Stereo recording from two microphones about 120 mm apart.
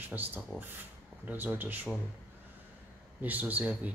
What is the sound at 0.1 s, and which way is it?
Speech, 15° right (ahead or behind).